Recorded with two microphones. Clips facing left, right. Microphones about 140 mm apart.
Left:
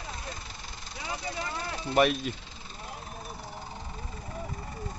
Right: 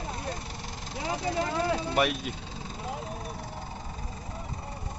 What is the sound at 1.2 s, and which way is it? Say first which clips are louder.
Speech: right 9 dB; 90° right.